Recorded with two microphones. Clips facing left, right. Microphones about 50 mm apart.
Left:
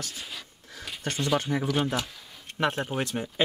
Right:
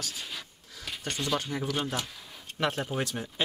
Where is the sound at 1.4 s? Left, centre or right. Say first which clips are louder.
Left 5 dB; left.